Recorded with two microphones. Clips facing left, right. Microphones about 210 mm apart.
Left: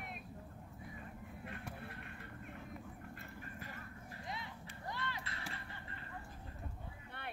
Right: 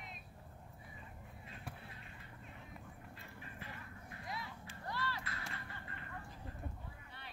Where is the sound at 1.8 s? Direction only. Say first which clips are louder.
Left 6 dB; 60° left (ahead or behind).